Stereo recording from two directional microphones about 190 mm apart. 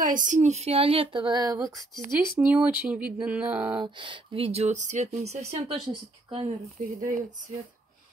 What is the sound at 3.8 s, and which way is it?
Speech, 25° right (ahead or behind).